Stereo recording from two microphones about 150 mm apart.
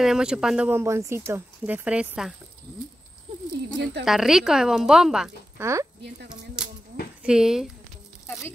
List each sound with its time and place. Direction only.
0.0 s speech: 5° right (ahead or behind)
3.8 s speech: centre (ahead or behind)
5.6 s speech: 20° right (ahead or behind)
6.2 s a sound: 5° right (ahead or behind)
7.2 s speech: 5° right (ahead or behind)